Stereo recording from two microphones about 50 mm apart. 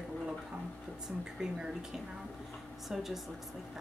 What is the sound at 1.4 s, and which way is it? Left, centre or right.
Speech, centre.